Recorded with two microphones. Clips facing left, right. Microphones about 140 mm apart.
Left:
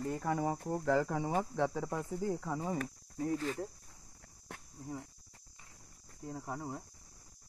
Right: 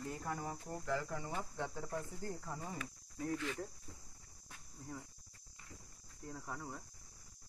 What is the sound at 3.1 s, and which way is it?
Speech, 35° left (ahead or behind).